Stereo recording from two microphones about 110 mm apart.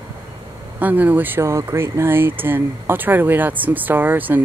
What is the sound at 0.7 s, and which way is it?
Speech, 15° right (ahead or behind).